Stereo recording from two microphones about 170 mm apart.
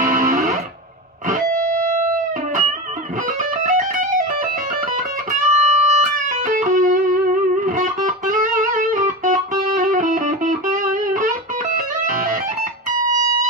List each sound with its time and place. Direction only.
0.0 s music: 55° right (ahead or behind)
3.6 s music: 50° right (ahead or behind)
5.3 s music: 45° right (ahead or behind)